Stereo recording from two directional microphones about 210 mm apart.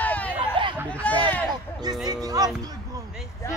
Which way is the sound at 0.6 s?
25° right (ahead or behind).